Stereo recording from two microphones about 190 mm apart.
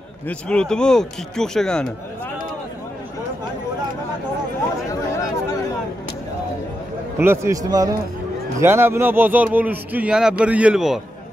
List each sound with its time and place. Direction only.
0.3 s a man's voice: 5° left (ahead or behind)
7.2 s speech: 15° right (ahead or behind)